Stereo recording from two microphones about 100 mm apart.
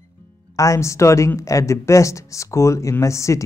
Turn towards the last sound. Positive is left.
turn(degrees=30)  # may be behind; listen again after turning